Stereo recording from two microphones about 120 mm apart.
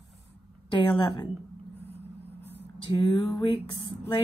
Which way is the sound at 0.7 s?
40° left (ahead or behind).